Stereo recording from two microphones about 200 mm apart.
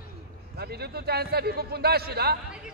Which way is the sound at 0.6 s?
50° right (ahead or behind).